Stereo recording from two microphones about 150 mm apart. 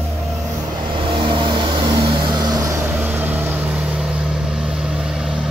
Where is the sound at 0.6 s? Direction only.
35° right (ahead or behind).